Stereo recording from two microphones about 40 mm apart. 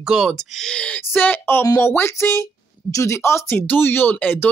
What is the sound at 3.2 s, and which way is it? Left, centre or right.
Speech, left.